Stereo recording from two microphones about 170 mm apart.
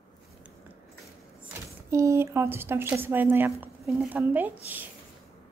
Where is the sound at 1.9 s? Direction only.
15° right (ahead or behind).